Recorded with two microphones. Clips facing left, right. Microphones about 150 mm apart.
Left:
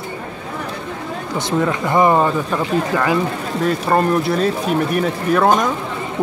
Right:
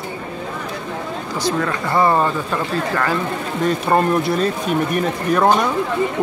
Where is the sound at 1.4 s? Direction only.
20° left (ahead or behind).